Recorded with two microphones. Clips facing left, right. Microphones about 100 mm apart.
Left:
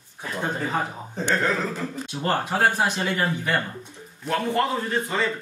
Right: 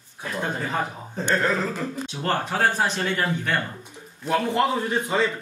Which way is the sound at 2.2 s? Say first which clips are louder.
Left 1 dB; 10° left (ahead or behind).